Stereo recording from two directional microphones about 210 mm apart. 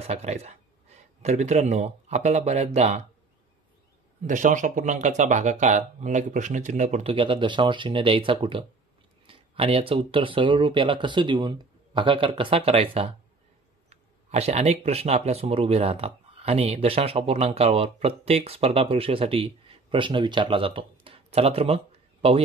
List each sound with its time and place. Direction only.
0.0 s speech: 30° right (ahead or behind)
4.3 s speech: 35° right (ahead or behind)